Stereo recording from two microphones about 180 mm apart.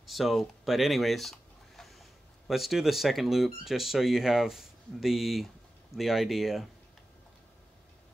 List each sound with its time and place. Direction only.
0.0 s speech: centre (ahead or behind)